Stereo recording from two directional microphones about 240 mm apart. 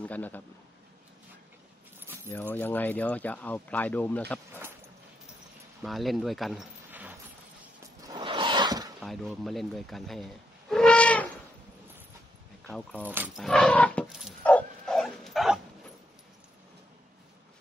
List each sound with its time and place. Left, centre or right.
0.0 s speech: centre
2.2 s speech: centre
5.8 s speech: centre
8.0 s a sound: centre
9.0 s speech: centre
12.6 s speech: centre
13.1 s dog: centre